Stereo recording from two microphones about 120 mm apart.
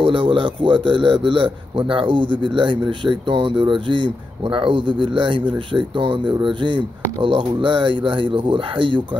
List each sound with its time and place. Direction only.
0.0 s speech: 45° right (ahead or behind)